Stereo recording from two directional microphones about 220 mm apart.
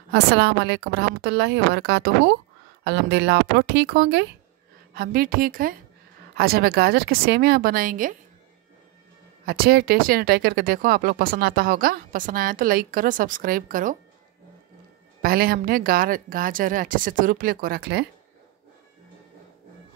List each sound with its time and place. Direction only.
0.1 s a woman's voice: 50° right (ahead or behind)
9.5 s speech: 45° right (ahead or behind)
15.2 s speech: 45° right (ahead or behind)